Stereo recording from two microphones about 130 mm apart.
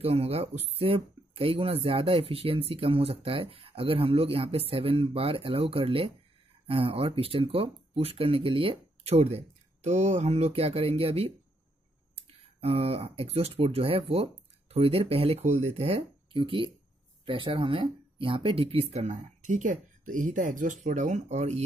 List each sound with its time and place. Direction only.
0.0 s speech: 50° right (ahead or behind)